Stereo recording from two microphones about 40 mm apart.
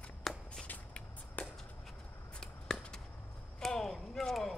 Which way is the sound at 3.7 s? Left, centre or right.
Centre.